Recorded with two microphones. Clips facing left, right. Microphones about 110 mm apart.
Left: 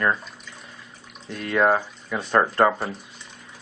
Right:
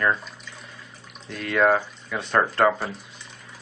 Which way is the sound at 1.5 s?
10° left (ahead or behind).